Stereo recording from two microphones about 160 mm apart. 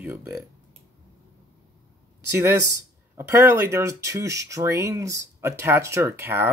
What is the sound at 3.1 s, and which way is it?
Speech, 15° right (ahead or behind).